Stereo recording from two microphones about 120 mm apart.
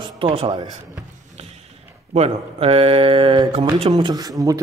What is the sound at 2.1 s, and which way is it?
Speech, 60° right (ahead or behind).